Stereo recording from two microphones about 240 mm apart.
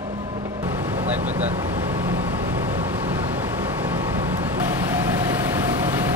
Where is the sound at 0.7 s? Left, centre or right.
Centre.